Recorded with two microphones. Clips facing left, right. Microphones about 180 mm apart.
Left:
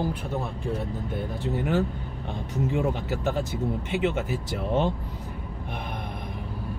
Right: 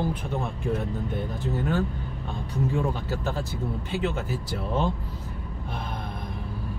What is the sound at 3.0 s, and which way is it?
Speech, 20° left (ahead or behind).